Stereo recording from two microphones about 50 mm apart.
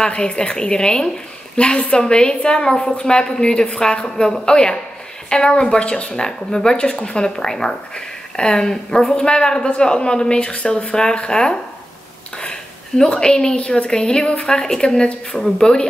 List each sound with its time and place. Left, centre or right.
0.0 s a woman's voice: centre
12.9 s a woman's voice: centre